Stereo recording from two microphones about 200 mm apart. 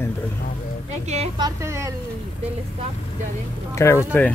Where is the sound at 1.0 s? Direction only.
30° right (ahead or behind).